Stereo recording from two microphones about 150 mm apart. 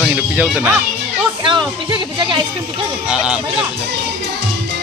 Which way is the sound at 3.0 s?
5° right (ahead or behind).